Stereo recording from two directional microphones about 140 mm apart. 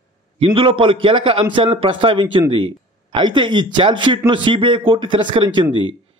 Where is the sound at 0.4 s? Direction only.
40° right (ahead or behind).